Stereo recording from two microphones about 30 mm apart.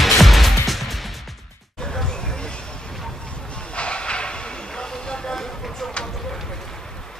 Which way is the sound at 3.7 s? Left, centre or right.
Left.